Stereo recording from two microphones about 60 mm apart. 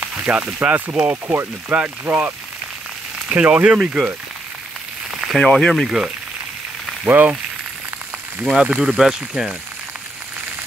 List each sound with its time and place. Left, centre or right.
0.0 s speech: right
1.1 s speech: right
1.7 s speech: centre
3.3 s speech: right
3.8 s speech: centre
5.2 s speech: centre
5.9 s speech: centre
7.1 s frying: right
8.6 s speech: centre